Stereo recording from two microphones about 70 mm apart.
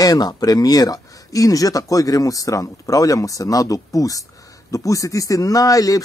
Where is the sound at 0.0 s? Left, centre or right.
Left.